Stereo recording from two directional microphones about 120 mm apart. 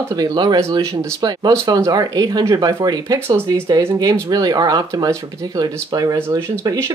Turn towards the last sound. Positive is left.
turn(degrees=-25)  # may be behind; listen again after turning